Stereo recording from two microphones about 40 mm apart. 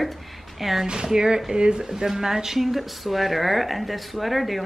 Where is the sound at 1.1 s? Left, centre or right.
Centre.